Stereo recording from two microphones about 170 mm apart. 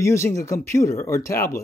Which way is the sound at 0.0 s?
15° left (ahead or behind).